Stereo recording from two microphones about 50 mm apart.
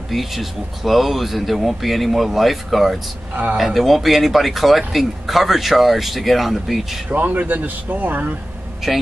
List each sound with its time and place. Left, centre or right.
0.1 s speech: centre
7.1 s speech: right
8.8 s a man's voice: centre